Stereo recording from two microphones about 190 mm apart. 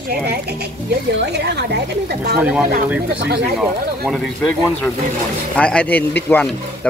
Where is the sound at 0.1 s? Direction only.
55° right (ahead or behind).